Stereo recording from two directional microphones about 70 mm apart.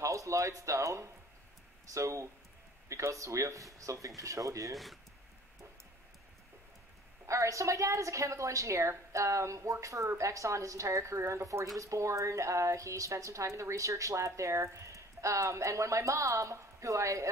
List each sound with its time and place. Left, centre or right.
0.0 s a woman's voice: right
7.2 s a woman's voice: right